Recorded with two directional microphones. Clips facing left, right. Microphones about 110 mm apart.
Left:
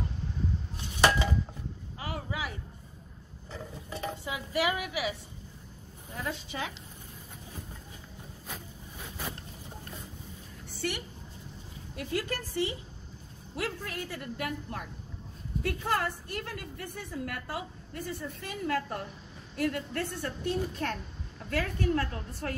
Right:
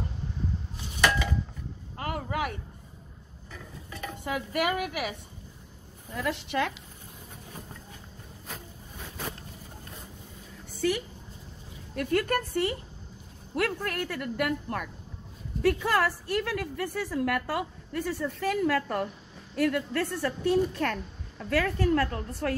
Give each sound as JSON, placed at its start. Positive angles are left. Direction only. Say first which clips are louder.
{"t": 2.0, "sound": "a sound", "louder": "right 6 dB", "side_deg": -55}
{"t": 3.5, "sound": "a sound", "louder": "left 3 dB", "side_deg": 30}
{"t": 4.2, "sound": "a woman's voice", "louder": "right 3 dB", "side_deg": -55}
{"t": 6.1, "sound": "speech", "louder": "right 7 dB", "side_deg": -80}
{"t": 11.9, "sound": "a woman's voice", "louder": "right 7 dB", "side_deg": -60}
{"t": 15.6, "sound": "a woman's voice", "louder": "right 6 dB", "side_deg": -80}
{"t": 19.5, "sound": "a woman's voice", "louder": "right 5 dB", "side_deg": -75}
{"t": 21.5, "sound": "a woman's voice", "louder": "right 5 dB", "side_deg": -90}